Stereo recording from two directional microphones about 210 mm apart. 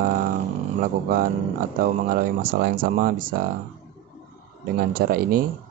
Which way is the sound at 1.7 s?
40° right (ahead or behind).